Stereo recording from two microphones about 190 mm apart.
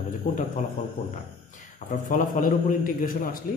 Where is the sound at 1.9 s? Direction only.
45° left (ahead or behind).